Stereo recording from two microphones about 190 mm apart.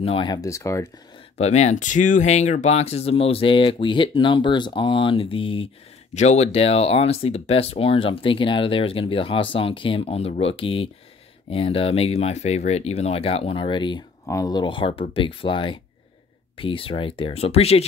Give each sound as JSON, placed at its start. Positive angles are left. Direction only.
{"t": 0.0, "sound": "speech", "side_deg": 25}
{"t": 1.4, "sound": "speech", "side_deg": 35}